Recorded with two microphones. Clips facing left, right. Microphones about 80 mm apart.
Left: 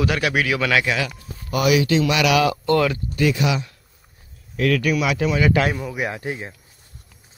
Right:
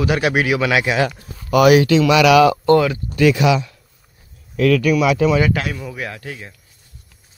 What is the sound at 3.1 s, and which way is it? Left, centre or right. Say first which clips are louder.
Speech: right 8 dB; right.